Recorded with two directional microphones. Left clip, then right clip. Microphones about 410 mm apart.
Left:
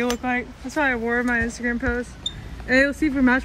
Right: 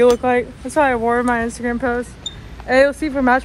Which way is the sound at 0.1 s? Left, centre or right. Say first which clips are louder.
Right 9 dB; centre.